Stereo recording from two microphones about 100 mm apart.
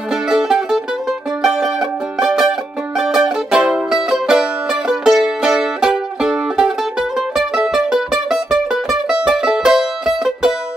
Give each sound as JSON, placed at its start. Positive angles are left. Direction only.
{"t": 0.3, "sound": "music", "side_deg": -5}